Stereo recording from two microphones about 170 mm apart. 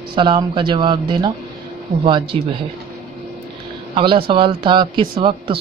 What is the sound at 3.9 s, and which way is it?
Speech, 30° right (ahead or behind).